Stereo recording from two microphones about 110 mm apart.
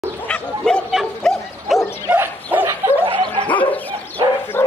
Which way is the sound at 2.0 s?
15° right (ahead or behind).